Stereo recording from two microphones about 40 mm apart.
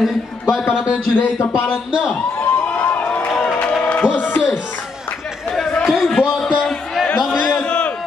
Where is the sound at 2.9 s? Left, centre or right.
Left.